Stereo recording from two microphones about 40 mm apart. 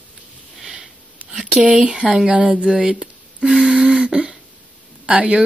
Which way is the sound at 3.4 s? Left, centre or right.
Centre.